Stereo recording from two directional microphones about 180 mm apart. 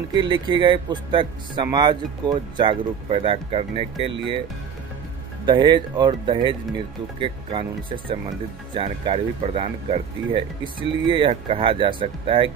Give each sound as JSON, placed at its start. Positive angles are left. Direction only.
{"t": 0.1, "sound": "speech", "side_deg": -25}
{"t": 5.4, "sound": "speech", "side_deg": -25}